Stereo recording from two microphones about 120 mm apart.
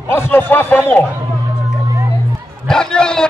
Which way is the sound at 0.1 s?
20° left (ahead or behind).